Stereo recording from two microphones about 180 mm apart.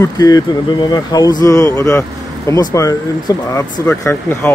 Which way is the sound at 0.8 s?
20° left (ahead or behind).